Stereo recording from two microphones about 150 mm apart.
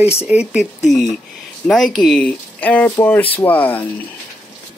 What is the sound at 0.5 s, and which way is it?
Speech, centre (ahead or behind).